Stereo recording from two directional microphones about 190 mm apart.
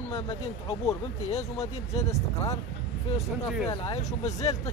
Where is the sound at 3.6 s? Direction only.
35° left (ahead or behind).